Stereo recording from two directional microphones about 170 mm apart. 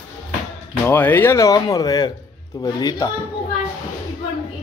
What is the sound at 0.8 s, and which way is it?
Speech, 10° left (ahead or behind).